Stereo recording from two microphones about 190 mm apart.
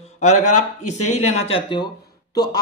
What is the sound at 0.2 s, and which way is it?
A man's voice, 40° left (ahead or behind).